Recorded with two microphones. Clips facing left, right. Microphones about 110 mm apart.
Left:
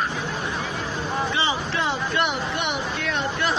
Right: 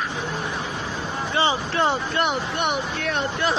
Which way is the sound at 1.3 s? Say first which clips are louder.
Right 3 dB; 40° right (ahead or behind).